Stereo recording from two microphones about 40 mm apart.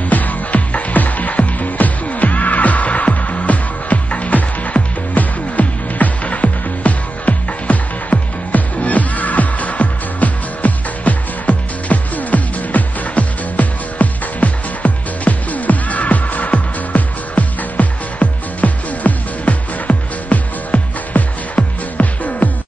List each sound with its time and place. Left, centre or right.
0.1 s music: left